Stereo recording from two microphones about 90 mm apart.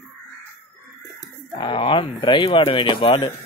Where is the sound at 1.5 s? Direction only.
60° left (ahead or behind).